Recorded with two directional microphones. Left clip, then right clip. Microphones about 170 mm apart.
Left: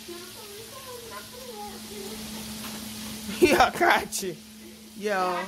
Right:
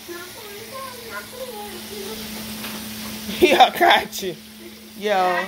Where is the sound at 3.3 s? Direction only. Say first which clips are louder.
Right 6 dB; 25° left (ahead or behind).